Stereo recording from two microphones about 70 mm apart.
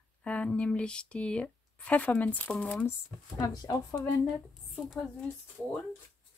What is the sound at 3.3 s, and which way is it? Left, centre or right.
Speech, left.